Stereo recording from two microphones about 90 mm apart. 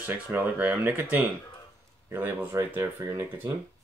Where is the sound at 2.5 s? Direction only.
30° right (ahead or behind).